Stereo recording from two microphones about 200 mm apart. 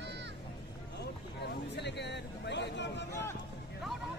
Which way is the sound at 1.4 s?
60° left (ahead or behind).